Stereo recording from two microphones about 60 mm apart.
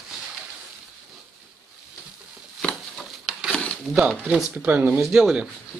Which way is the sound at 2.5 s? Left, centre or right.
Centre.